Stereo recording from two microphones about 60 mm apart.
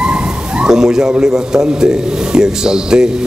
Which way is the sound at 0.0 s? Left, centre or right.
Centre.